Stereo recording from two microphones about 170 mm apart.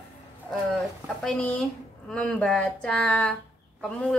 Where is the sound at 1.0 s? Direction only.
5° left (ahead or behind).